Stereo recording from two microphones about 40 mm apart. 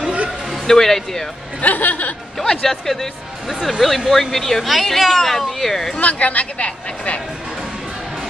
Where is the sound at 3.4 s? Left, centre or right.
Centre.